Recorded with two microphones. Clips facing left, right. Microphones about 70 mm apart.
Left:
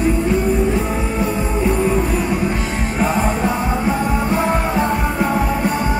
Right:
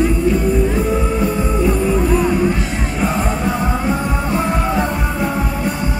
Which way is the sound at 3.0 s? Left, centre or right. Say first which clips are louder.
Left 1 dB; left.